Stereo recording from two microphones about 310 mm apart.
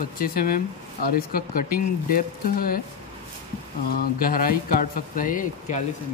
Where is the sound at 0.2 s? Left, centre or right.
Left.